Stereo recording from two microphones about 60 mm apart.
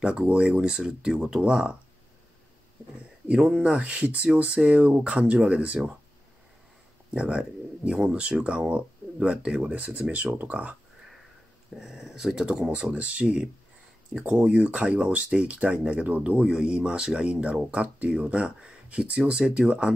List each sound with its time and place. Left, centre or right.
0.0 s speech: centre
3.3 s speech: centre
7.2 s speech: centre
11.8 s speech: centre